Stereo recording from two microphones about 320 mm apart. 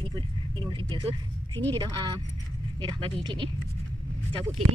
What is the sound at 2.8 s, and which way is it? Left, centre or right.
Speech, centre.